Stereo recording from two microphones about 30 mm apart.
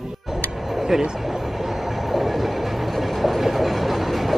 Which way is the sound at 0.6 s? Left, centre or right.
Centre.